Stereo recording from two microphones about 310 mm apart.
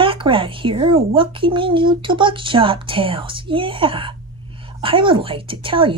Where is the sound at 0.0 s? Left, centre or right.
Centre.